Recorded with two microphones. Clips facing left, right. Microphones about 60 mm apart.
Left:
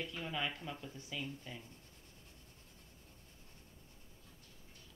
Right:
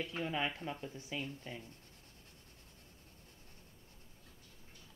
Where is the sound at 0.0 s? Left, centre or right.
Right.